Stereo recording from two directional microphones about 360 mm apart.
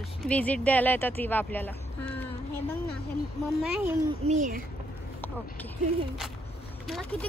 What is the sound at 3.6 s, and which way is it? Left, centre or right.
Speech, centre.